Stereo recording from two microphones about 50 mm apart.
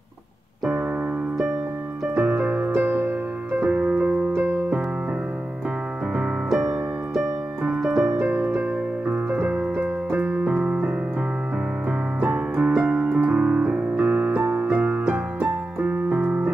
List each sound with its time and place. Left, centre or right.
2.1 s music: centre
4.4 s electric piano: right
7.2 s music: centre
9.1 s keyboard: right
12.2 s keyboard: right
13.9 s music: right